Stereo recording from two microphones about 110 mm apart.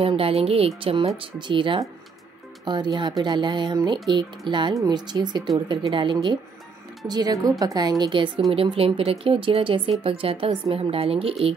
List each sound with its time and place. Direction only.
0.0 s speech: 60° right (ahead or behind)
7.1 s speech: 35° right (ahead or behind)
8.0 s speech: 50° right (ahead or behind)